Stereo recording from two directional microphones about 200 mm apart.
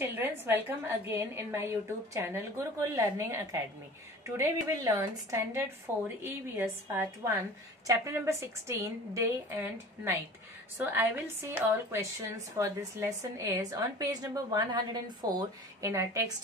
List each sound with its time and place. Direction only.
0.0 s a woman's voice: 10° right (ahead or behind)